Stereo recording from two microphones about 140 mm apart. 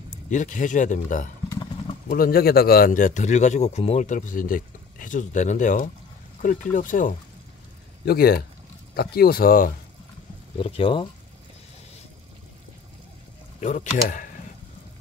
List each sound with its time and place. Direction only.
0.3 s speech: 65° left (ahead or behind)
2.0 s speech: 90° left; by 7.2 s 75° left (ahead or behind)
8.0 s speech: 90° left
10.6 s speech: 40° left (ahead or behind)
13.6 s speech: 55° left (ahead or behind)